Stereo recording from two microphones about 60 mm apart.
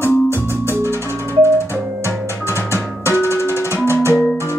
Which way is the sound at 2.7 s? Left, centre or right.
Left.